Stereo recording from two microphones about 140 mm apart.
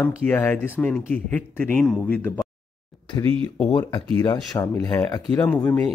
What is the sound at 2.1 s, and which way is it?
Speech, 20° left (ahead or behind).